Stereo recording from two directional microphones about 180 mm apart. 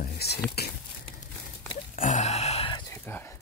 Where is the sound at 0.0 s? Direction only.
60° left (ahead or behind).